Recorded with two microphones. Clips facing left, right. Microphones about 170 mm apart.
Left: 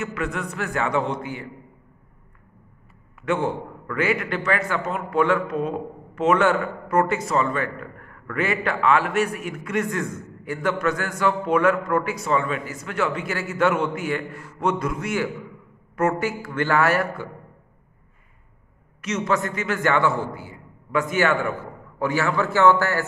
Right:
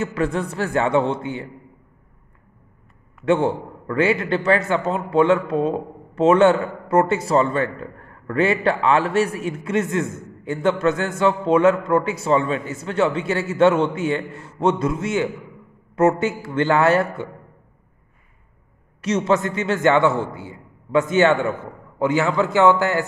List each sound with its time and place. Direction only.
0.0 s a man's voice: 30° right (ahead or behind)
3.3 s a man's voice: 30° right (ahead or behind)
18.9 s a man's voice: 30° right (ahead or behind)